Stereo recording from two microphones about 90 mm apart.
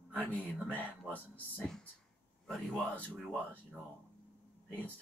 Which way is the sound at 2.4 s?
5° left (ahead or behind).